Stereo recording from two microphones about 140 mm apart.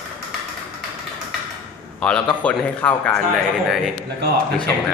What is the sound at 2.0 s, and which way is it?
A man's voice, 5° left (ahead or behind).